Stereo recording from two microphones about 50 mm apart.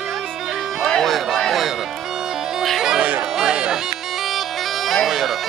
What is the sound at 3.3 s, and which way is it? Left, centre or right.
Bagpipes, centre.